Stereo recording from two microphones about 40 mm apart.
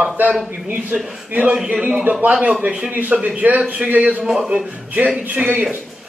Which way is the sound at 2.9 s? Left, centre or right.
Right.